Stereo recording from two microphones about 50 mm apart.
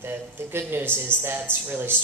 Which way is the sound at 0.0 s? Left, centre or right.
Right.